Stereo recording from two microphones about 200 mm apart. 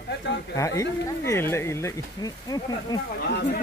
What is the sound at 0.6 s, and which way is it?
Speech, 15° left (ahead or behind).